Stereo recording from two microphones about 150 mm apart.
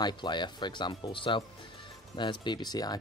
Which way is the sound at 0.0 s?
30° left (ahead or behind).